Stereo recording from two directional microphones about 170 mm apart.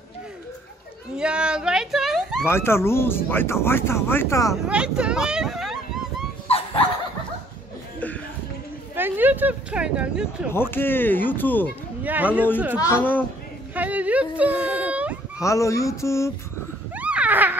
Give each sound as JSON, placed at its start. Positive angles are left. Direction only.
{"t": 1.1, "sound": "a sound", "side_deg": -5}
{"t": 2.4, "sound": "speech", "side_deg": 15}
{"t": 4.6, "sound": "speech", "side_deg": -5}
{"t": 6.5, "sound": "dog", "side_deg": 35}
{"t": 8.9, "sound": "speech", "side_deg": -10}
{"t": 10.5, "sound": "speech", "side_deg": 15}
{"t": 12.0, "sound": "speech", "side_deg": -10}
{"t": 12.8, "sound": "speech", "side_deg": 15}
{"t": 13.7, "sound": "speech", "side_deg": -10}
{"t": 15.4, "sound": "speech", "side_deg": 20}
{"t": 16.9, "sound": "a sound", "side_deg": -10}